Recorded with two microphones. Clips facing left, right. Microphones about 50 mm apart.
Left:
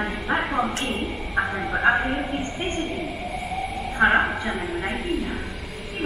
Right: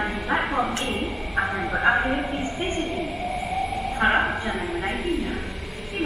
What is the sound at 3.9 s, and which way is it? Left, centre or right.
A woman's voice, centre.